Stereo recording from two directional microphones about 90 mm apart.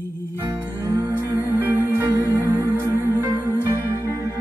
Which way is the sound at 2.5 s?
30° right (ahead or behind).